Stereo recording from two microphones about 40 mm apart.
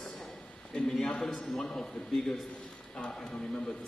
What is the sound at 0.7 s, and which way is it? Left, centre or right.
A man's voice, centre.